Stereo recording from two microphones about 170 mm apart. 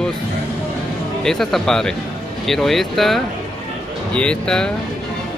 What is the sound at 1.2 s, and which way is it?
Speech, centre (ahead or behind).